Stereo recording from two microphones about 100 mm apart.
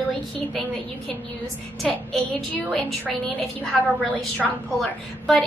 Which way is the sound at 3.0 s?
5° left (ahead or behind).